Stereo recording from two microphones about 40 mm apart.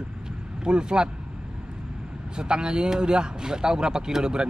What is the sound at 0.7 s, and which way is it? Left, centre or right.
Speech, right.